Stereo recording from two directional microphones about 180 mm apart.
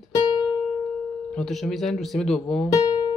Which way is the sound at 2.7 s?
20° left (ahead or behind).